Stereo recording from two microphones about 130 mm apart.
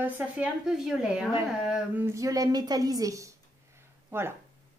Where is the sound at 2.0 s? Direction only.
25° right (ahead or behind).